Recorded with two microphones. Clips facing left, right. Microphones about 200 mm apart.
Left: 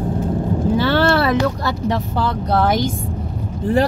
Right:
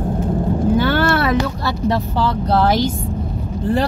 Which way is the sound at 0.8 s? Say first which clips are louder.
Left 1 dB; 30° left (ahead or behind).